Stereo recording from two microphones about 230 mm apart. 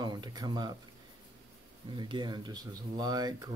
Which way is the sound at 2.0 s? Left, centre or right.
Centre.